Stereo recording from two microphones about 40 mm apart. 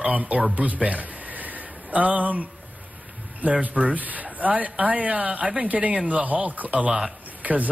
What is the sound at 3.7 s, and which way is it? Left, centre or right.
Speech, right.